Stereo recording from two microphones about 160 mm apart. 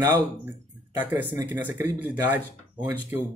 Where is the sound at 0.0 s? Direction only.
15° right (ahead or behind).